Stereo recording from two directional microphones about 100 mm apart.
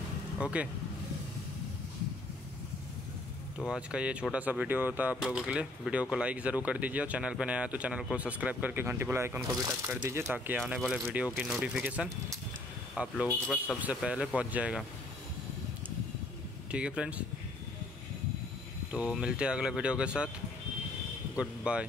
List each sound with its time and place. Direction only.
0.4 s speech: 10° right (ahead or behind)
3.6 s speech: 10° right (ahead or behind)
16.7 s speech: 10° right (ahead or behind)
18.9 s speech: 10° right (ahead or behind)
21.4 s speech: 10° right (ahead or behind)